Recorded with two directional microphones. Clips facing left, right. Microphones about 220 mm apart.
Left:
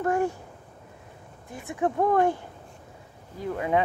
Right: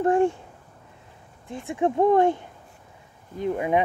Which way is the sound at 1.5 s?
30° right (ahead or behind).